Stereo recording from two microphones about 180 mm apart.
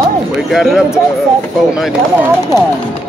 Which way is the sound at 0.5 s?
Centre (ahead or behind).